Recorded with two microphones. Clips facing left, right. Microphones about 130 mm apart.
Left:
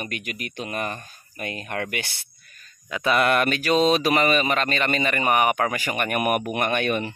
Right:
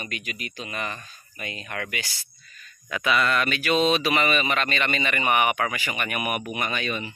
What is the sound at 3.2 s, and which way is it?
Speech, 55° left (ahead or behind).